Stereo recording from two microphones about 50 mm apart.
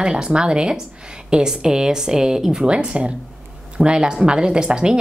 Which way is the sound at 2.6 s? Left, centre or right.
Right.